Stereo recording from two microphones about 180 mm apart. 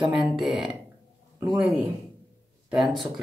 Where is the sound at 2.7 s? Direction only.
Centre (ahead or behind).